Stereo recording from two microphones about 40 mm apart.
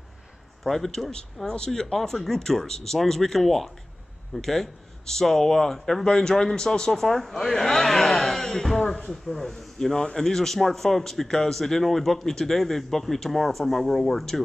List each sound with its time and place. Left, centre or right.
0.7 s a man's voice: centre
1.1 s speech: centre
1.7 s a man's voice: centre